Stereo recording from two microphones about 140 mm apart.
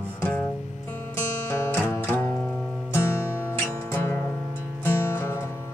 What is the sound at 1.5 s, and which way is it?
Music, 15° left (ahead or behind).